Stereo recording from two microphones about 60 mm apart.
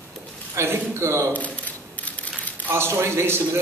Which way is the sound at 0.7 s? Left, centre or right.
Right.